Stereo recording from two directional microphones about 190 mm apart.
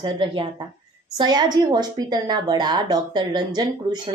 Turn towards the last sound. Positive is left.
turn(degrees=-20)  # may be behind; listen again after turning